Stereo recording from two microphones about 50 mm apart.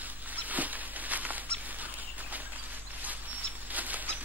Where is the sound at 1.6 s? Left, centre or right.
Right.